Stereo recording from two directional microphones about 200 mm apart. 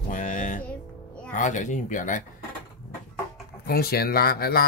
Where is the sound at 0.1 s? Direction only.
40° left (ahead or behind).